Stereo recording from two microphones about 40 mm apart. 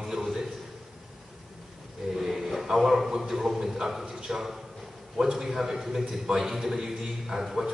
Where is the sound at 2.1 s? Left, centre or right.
Centre.